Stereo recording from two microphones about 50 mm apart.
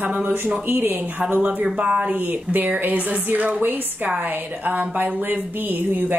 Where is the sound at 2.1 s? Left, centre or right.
Right.